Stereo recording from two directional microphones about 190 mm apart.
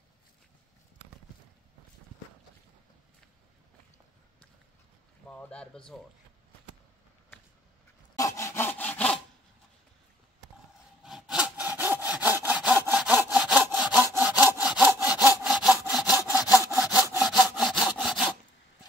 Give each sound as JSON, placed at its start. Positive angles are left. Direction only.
{"t": 5.3, "sound": "speech", "side_deg": 5}
{"t": 8.2, "sound": "sawing", "side_deg": 15}
{"t": 11.1, "sound": "sawing", "side_deg": -5}